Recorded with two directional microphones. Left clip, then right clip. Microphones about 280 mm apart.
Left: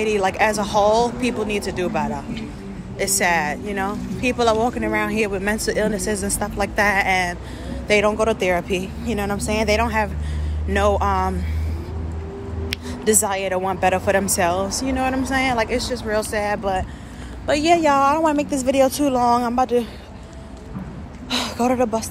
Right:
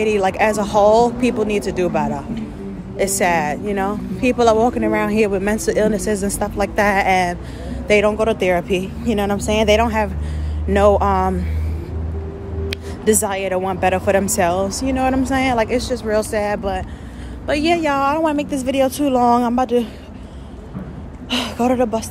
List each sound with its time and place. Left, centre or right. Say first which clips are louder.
0.0 s speech: right 2 dB; centre
12.6 s a woman's voice: right 3 dB; centre
21.3 s speech: right 2 dB; centre